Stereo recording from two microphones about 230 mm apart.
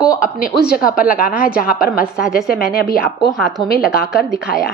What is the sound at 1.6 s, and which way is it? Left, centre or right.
Speech, left.